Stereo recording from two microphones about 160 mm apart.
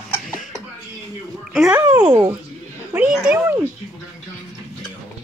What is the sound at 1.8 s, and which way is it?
Speech, 25° right (ahead or behind).